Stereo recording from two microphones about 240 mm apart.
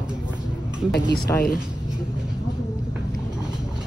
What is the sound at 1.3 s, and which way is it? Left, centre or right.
Speech, centre.